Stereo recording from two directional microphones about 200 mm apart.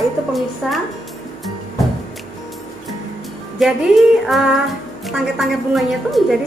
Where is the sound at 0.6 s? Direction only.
5° right (ahead or behind).